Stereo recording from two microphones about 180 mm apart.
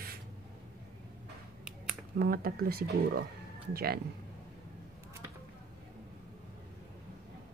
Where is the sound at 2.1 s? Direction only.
55° right (ahead or behind).